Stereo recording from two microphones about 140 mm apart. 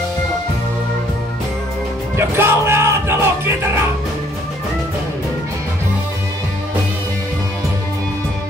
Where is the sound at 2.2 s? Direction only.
20° right (ahead or behind).